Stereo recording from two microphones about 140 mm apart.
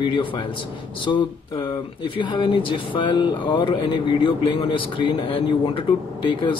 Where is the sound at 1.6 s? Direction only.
35° left (ahead or behind).